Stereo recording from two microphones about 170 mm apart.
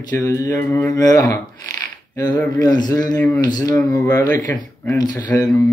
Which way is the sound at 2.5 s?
25° left (ahead or behind).